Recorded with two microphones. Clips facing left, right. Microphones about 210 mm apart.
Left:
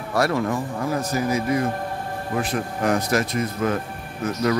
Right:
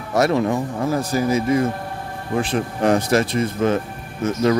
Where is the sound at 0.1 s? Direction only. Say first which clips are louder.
Right 4 dB; 20° right (ahead or behind).